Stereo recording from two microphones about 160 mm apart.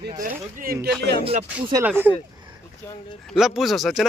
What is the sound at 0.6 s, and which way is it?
Speech, 70° right (ahead or behind).